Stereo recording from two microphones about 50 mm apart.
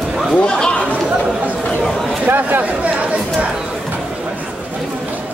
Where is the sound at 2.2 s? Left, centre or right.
Right.